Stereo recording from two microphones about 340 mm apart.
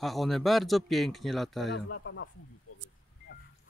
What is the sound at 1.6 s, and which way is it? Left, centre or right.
Speech, left.